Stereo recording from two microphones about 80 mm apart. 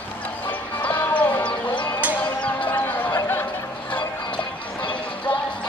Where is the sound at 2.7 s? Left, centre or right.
Left.